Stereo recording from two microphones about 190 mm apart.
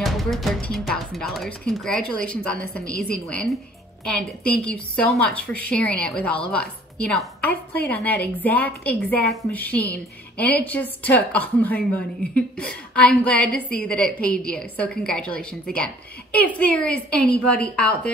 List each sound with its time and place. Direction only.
0.0 s a woman's voice: centre (ahead or behind)
7.7 s a woman's voice: 60° left (ahead or behind)
8.0 s a woman's voice: 10° left (ahead or behind)